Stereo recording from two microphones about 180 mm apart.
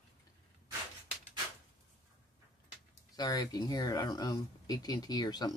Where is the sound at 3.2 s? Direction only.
20° left (ahead or behind).